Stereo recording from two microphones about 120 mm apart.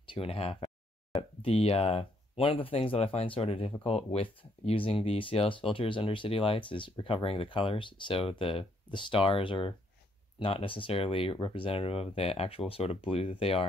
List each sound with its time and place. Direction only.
0.1 s speech: 50° left (ahead or behind)